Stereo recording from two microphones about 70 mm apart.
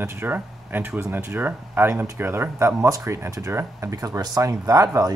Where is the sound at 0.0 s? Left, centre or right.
Right.